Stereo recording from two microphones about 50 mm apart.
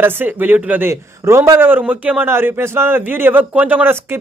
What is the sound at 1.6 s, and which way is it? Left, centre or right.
Speech, right.